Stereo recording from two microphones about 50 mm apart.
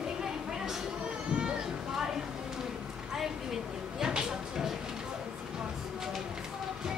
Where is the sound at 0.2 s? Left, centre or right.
Centre.